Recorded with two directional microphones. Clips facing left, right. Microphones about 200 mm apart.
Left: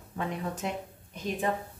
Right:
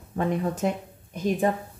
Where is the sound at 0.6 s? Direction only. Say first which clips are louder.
Right 8 dB; 45° right (ahead or behind).